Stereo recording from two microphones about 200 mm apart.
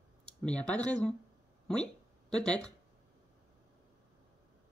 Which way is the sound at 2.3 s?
5° left (ahead or behind).